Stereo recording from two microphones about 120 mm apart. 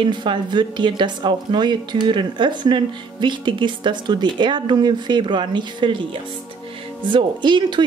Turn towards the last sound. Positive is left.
turn(degrees=-40)  # may be behind; listen again after turning